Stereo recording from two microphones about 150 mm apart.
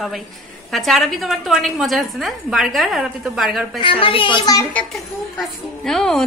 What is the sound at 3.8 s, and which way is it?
Speech, 35° left (ahead or behind).